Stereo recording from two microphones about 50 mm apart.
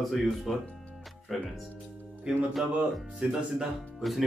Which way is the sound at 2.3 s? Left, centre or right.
Centre.